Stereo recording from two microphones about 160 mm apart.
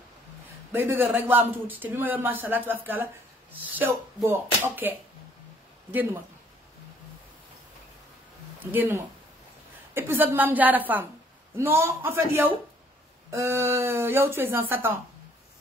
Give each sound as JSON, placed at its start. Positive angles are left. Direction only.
{"t": 0.7, "sound": "a man's voice", "side_deg": -10}
{"t": 8.7, "sound": "a man's voice", "side_deg": -15}